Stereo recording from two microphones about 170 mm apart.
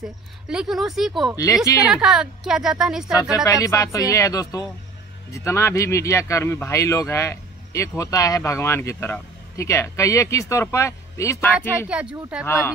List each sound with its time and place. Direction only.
0.0 s speech: 5° right (ahead or behind)
1.3 s speech: 20° left (ahead or behind)
1.9 s speech: 5° right (ahead or behind)
3.4 s speech: 20° left (ahead or behind)
11.9 s speech: 5° right (ahead or behind)
12.4 s speech: 15° left (ahead or behind)